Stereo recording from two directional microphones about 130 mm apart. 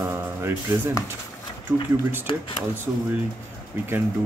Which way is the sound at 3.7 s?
15° right (ahead or behind).